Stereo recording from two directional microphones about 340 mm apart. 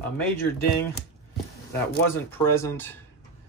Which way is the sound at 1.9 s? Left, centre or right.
Centre.